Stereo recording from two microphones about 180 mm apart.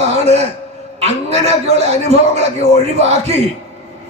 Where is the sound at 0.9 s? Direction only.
35° right (ahead or behind).